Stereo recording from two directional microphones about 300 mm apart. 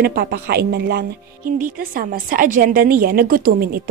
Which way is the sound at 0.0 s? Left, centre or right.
Right.